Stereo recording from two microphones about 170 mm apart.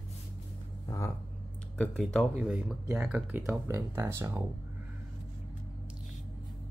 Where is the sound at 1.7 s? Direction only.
5° left (ahead or behind).